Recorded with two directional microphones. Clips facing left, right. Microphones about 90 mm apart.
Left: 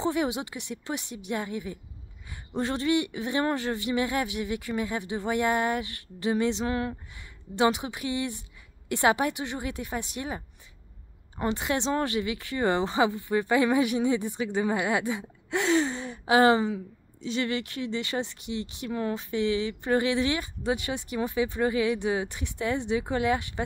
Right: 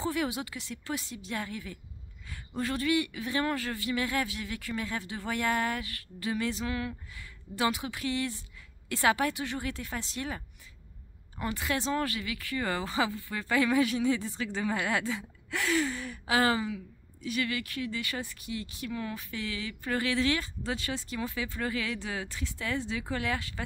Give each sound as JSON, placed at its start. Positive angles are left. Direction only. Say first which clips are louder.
{"t": 0.0, "sound": "speech", "louder": "left 4 dB", "side_deg": 20}
{"t": 7.2, "sound": "a woman's voice", "louder": "left 7 dB", "side_deg": 20}